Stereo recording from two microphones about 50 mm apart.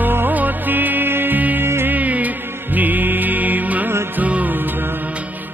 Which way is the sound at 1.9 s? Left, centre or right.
Right.